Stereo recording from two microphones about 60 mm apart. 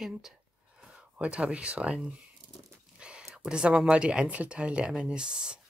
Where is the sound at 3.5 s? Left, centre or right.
Centre.